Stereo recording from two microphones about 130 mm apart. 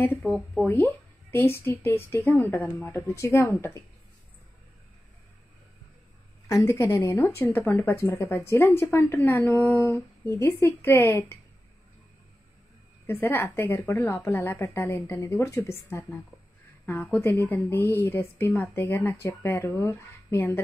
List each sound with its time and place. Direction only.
0.0 s speech: 15° left (ahead or behind)
6.5 s a woman's voice: 25° left (ahead or behind)
13.0 s a woman's voice: 15° left (ahead or behind)